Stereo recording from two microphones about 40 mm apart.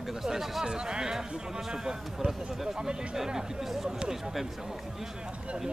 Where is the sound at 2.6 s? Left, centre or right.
Centre.